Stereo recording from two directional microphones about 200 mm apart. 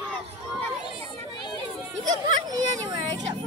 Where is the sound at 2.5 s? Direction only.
20° right (ahead or behind).